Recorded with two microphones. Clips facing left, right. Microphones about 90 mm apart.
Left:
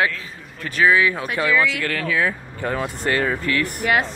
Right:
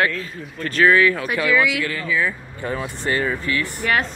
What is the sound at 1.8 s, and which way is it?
Speech, 65° left (ahead or behind).